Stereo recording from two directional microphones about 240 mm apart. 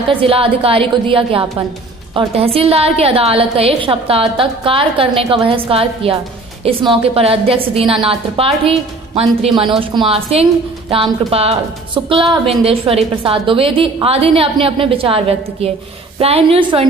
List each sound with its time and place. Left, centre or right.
0.1 s a woman's voice: right